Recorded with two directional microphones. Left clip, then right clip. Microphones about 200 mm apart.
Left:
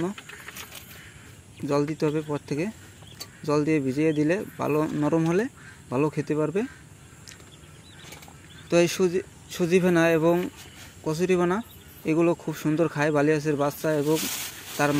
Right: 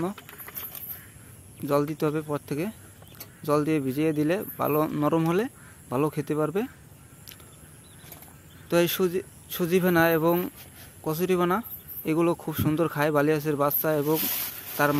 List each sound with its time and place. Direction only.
1.7 s speech: 10° right (ahead or behind)
8.6 s speech: 5° right (ahead or behind)